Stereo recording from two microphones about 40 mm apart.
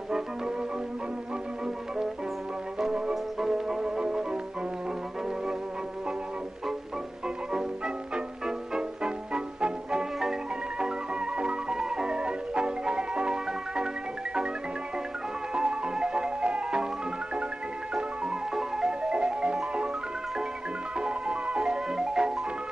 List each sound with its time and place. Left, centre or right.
3.3 s music: centre
7.5 s music: centre
15.5 s music: right
17.9 s music: centre
19.0 s marimba: right
21.0 s music: right